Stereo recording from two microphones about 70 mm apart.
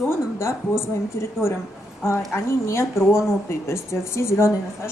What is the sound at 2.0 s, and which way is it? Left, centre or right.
Speech, left.